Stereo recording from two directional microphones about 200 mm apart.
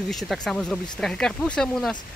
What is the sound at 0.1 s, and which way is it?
Speech, centre (ahead or behind).